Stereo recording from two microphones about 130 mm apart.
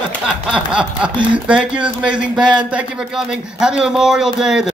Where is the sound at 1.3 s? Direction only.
10° right (ahead or behind).